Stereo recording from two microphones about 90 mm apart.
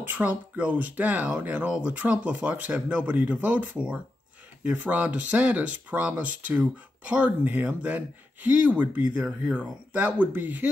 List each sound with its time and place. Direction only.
0.0 s speech: 15° right (ahead or behind)